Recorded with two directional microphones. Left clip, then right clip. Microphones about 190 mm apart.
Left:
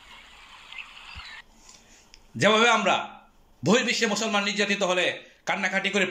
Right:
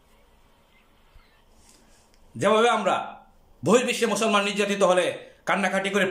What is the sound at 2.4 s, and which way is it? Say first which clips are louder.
Speech: even; 15° right (ahead or behind).